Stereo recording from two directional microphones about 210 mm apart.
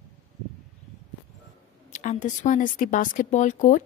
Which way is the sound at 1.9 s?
35° left (ahead or behind).